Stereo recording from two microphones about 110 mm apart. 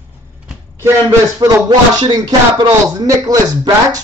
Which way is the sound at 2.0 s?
45° right (ahead or behind).